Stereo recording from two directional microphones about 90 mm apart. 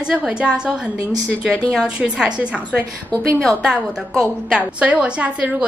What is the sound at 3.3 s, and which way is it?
Speech, 10° left (ahead or behind).